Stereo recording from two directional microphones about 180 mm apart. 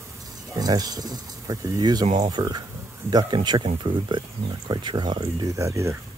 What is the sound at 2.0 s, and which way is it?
Speech, 40° right (ahead or behind).